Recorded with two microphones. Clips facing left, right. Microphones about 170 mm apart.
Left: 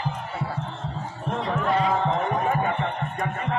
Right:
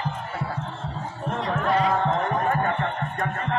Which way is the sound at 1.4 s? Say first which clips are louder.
Right 1 dB; 5° left (ahead or behind).